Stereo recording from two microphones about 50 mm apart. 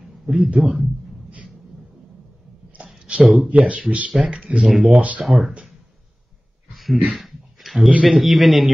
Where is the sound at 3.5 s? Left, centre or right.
Right.